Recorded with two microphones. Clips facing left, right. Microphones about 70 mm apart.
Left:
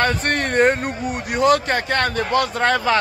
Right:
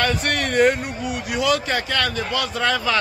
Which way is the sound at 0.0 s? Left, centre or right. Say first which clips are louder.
Left 2 dB; left.